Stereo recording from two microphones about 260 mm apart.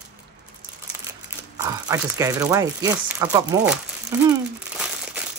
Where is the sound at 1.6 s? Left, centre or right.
Centre.